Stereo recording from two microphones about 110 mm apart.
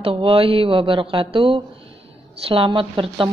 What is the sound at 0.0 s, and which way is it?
Speech, 55° right (ahead or behind).